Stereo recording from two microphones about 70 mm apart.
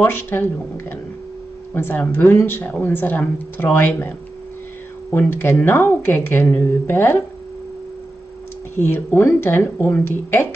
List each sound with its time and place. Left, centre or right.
0.0 s a woman's voice: left
5.1 s speech: left
8.7 s speech: left